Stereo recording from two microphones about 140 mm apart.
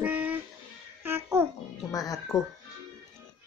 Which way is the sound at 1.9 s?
25° left (ahead or behind).